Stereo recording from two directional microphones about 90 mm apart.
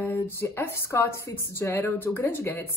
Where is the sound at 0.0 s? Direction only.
25° left (ahead or behind).